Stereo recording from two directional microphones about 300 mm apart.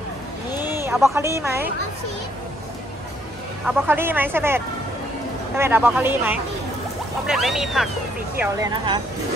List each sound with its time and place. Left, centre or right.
0.6 s speech: centre
3.6 s speech: centre